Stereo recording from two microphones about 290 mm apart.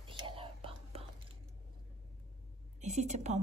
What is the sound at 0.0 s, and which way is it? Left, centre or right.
Whispering, centre.